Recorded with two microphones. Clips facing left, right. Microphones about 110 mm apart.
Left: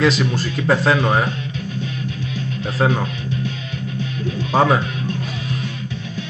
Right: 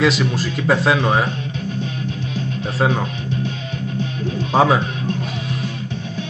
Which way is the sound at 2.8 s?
5° right (ahead or behind).